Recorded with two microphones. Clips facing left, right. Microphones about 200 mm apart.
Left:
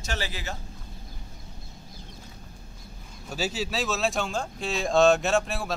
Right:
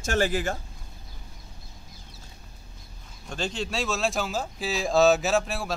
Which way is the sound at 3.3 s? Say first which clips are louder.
Left 1 dB; 5° left (ahead or behind).